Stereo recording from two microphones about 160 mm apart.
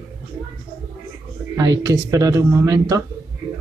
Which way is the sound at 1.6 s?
20° right (ahead or behind).